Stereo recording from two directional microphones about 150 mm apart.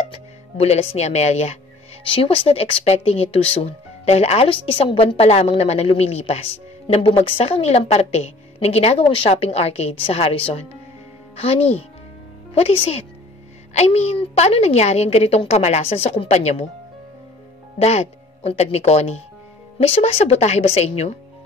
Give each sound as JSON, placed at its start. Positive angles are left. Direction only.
{"t": 0.1, "sound": "speech", "side_deg": 40}
{"t": 17.7, "sound": "speech", "side_deg": 45}